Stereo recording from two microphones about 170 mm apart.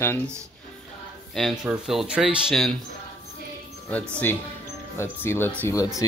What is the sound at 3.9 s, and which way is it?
Speech, 10° left (ahead or behind).